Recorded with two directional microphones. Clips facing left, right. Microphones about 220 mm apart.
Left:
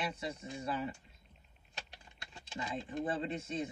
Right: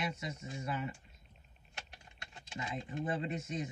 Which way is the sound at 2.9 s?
30° left (ahead or behind).